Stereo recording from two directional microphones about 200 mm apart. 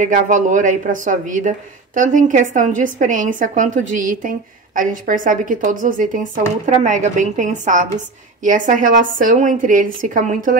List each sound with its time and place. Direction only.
0.0 s a woman's voice: 40° right (ahead or behind)